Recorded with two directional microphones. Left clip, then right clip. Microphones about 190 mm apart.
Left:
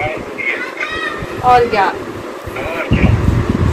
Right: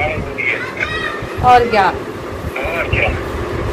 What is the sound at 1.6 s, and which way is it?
Speech, 5° right (ahead or behind).